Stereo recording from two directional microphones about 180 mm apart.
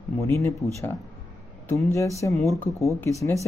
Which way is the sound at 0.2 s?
15° left (ahead or behind).